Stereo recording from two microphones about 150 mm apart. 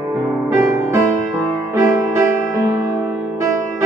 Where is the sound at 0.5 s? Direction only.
20° right (ahead or behind).